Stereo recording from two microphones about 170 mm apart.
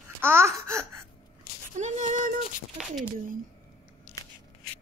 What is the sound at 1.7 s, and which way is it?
Female singing, 45° right (ahead or behind).